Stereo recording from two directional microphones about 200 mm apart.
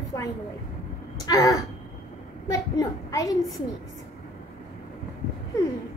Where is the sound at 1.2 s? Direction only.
15° left (ahead or behind).